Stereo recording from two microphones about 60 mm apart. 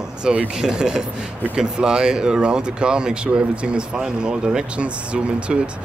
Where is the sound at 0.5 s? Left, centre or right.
Centre.